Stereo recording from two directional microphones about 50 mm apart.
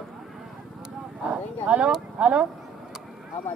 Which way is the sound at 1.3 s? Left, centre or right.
Right.